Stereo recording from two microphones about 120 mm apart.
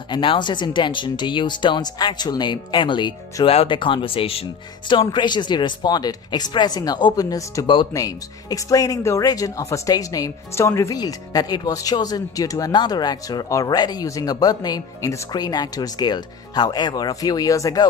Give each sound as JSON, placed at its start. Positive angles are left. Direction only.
{"t": 0.1, "sound": "speech", "side_deg": 45}
{"t": 5.1, "sound": "speech", "side_deg": 40}
{"t": 7.6, "sound": "speech", "side_deg": 45}
{"t": 7.9, "sound": "speech", "side_deg": 30}